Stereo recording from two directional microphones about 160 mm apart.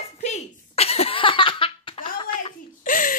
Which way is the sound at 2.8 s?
60° left (ahead or behind).